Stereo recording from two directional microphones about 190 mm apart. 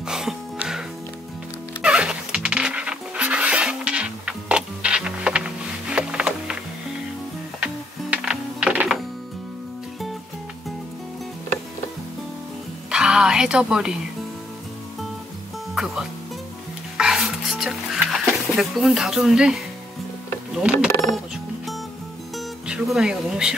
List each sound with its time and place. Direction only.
0.0 s music: 5° right (ahead or behind)
7.6 s music: 5° right (ahead or behind)
12.9 s music: 5° right (ahead or behind)
15.7 s music: centre (ahead or behind)
20.5 s speech: 5° right (ahead or behind)
20.9 s music: 20° left (ahead or behind)
22.7 s speech: 5° right (ahead or behind)